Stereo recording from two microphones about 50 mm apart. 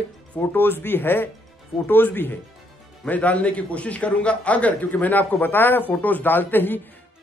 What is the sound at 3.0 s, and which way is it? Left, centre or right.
Speech, left.